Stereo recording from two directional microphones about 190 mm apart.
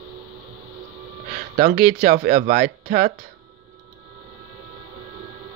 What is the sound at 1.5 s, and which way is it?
Speech, 45° right (ahead or behind).